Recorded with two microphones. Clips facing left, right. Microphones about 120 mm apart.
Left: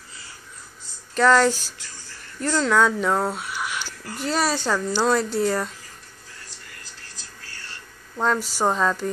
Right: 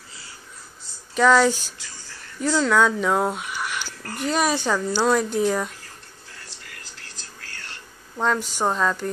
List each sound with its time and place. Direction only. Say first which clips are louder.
1.1 s a woman's voice: even; 5° right (ahead or behind)
3.3 s a sound: right 1 dB; centre (ahead or behind)
4.0 s speech: right 4 dB; 55° right (ahead or behind)
4.3 s a woman's voice: right 1 dB; centre (ahead or behind)
5.2 s speech: right 1 dB; 10° right (ahead or behind)
8.2 s speech: even; 10° right (ahead or behind)
8.5 s a woman's voice: left 2 dB; 5° left (ahead or behind)